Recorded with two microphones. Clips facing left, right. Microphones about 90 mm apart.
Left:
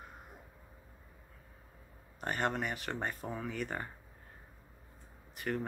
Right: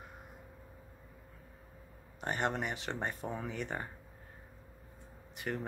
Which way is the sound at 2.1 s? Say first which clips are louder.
Even; 20° right (ahead or behind).